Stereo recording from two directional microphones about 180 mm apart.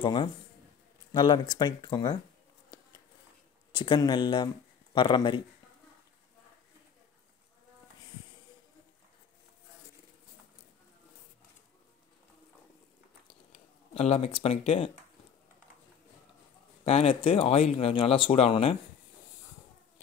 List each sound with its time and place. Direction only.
0.0 s speech: 25° left (ahead or behind)
3.7 s speech: 25° left (ahead or behind)
13.3 s a sound: 35° left (ahead or behind)
16.8 s speech: 35° left (ahead or behind)